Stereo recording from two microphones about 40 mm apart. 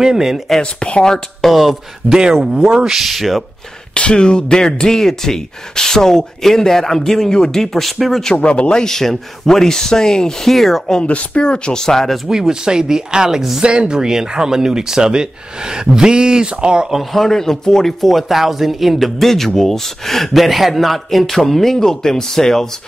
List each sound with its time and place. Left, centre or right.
0.0 s speech: centre
0.6 s speech: left
1.4 s speech: centre
2.0 s speech: right
2.7 s speech: centre
3.9 s speech: left; by 8.2 s centre
8.2 s speech: centre
8.8 s speech: centre
11.1 s speech: left
11.4 s speech: left
12.3 s speech: centre
13.6 s speech: right
17.1 s speech: centre